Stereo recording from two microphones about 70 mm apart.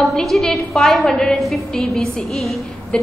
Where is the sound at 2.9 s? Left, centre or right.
Centre.